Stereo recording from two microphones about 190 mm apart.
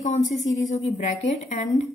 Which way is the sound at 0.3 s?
35° left (ahead or behind).